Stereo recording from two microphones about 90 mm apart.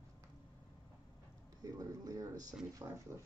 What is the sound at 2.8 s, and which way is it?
Speech, 40° right (ahead or behind).